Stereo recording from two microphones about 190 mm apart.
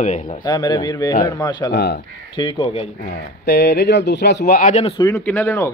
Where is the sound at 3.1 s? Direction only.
60° left (ahead or behind); by 4.9 s 40° left (ahead or behind).